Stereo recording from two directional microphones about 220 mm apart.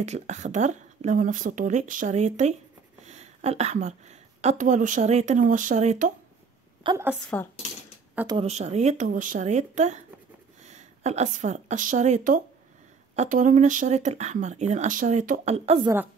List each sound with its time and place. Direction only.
0.0 s speech: 30° right (ahead or behind)
3.1 s a sound: 30° right (ahead or behind)
4.4 s speech: 30° right (ahead or behind)
6.8 s a woman's voice: 20° right (ahead or behind)
7.3 s speech: 5° left (ahead or behind)
8.4 s speech: 30° right (ahead or behind)